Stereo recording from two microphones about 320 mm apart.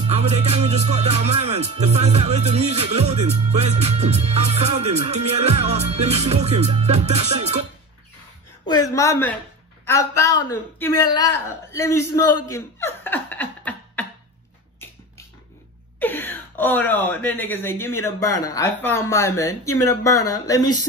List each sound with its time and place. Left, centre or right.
0.0 s speech: centre
8.6 s a woman's voice: centre
16.0 s speech: centre